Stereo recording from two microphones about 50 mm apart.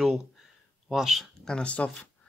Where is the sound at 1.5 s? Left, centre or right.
Left.